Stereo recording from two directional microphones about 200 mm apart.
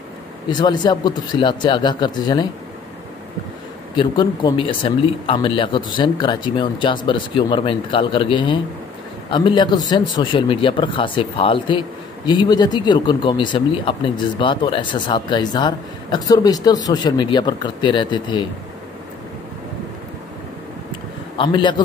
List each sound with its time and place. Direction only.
0.5 s speech: 20° left (ahead or behind)
3.9 s speech: 25° left (ahead or behind)
21.4 s speech: 25° left (ahead or behind)